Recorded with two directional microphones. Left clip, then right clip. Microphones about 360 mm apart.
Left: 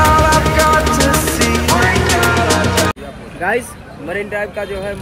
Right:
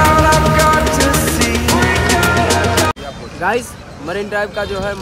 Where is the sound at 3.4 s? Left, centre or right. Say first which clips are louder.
Even; centre.